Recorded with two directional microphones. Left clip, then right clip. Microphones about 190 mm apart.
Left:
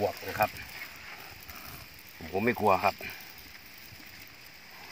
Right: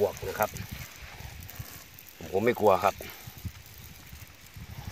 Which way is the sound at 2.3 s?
50° right (ahead or behind).